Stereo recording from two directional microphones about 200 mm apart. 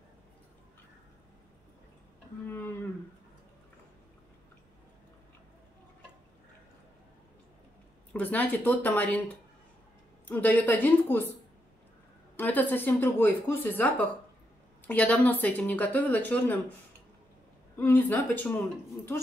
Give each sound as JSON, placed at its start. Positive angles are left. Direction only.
{"t": 2.4, "sound": "a sound", "side_deg": 10}
{"t": 8.1, "sound": "speech", "side_deg": 5}
{"t": 10.2, "sound": "speech", "side_deg": 10}
{"t": 12.4, "sound": "speech", "side_deg": 10}
{"t": 17.7, "sound": "speech", "side_deg": 10}